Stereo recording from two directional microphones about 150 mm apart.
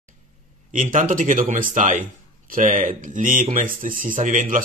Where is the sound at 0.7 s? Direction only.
60° right (ahead or behind).